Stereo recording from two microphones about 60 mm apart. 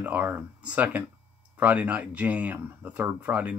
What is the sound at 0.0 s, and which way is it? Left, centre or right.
Speech, right.